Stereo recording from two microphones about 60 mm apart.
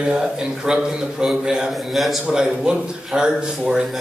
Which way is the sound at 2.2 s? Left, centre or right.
Centre.